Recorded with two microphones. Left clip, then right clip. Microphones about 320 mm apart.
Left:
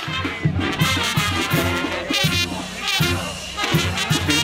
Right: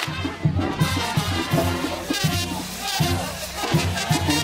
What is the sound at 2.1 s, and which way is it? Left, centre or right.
Music, right.